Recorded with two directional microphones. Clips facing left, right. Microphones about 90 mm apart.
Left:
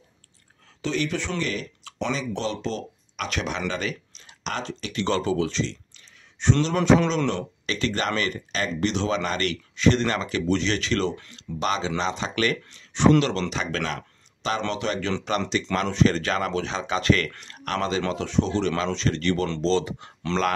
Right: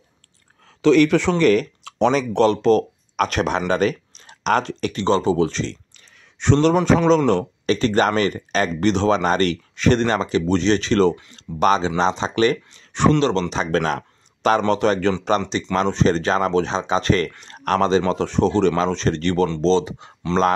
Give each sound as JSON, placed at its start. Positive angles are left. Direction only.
{"t": 0.8, "sound": "speech", "side_deg": -80}
{"t": 1.4, "sound": "speech", "side_deg": -60}
{"t": 4.9, "sound": "speech", "side_deg": -30}
{"t": 5.5, "sound": "speech", "side_deg": -45}
{"t": 6.4, "sound": "speech", "side_deg": -70}
{"t": 6.7, "sound": "a man's voice", "side_deg": -5}
{"t": 7.6, "sound": "speech", "side_deg": -40}
{"t": 10.0, "sound": "speech", "side_deg": -30}
{"t": 12.0, "sound": "speech", "side_deg": -30}
{"t": 12.9, "sound": "speech", "side_deg": -50}
{"t": 13.5, "sound": "speech", "side_deg": -35}
{"t": 15.7, "sound": "speech", "side_deg": -30}
{"t": 19.6, "sound": "speech", "side_deg": -25}
{"t": 20.3, "sound": "speech", "side_deg": -10}